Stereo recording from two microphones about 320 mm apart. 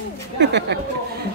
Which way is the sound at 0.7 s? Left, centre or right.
Right.